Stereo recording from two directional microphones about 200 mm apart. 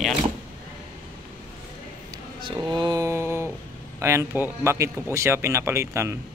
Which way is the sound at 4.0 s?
15° right (ahead or behind).